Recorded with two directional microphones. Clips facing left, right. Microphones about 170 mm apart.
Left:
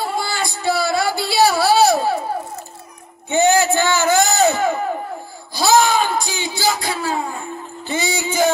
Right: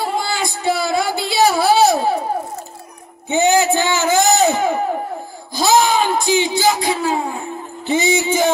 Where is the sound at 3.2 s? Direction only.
20° right (ahead or behind).